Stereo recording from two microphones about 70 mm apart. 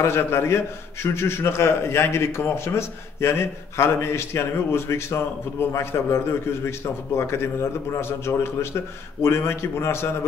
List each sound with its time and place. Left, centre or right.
0.0 s a man's voice: left